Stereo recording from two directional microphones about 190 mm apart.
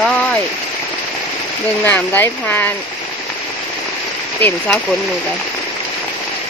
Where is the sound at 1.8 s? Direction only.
10° left (ahead or behind).